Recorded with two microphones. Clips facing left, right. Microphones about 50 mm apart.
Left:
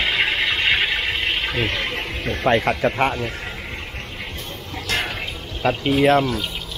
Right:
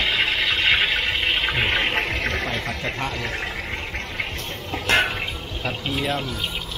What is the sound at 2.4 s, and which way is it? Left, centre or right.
Speech, left.